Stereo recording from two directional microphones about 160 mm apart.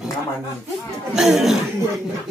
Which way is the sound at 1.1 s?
Centre (ahead or behind).